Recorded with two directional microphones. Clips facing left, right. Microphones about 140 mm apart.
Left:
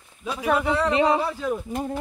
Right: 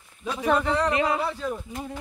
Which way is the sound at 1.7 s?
45° left (ahead or behind).